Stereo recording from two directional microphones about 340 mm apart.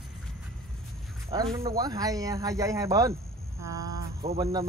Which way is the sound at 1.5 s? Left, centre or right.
Centre.